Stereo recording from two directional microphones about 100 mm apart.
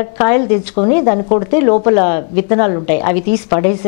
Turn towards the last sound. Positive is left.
turn(degrees=15)  # may be behind; listen again after turning